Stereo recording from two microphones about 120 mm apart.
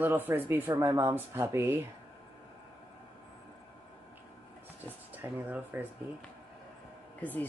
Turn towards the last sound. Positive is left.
turn(degrees=15)  # may be behind; listen again after turning